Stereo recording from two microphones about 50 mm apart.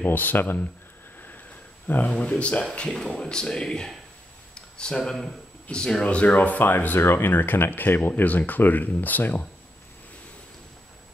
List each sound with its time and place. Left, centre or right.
0.1 s speech: left
2.0 s speech: left
4.6 s a sound: centre
5.7 s speech: centre
6.0 s speech: left
6.6 s speech: left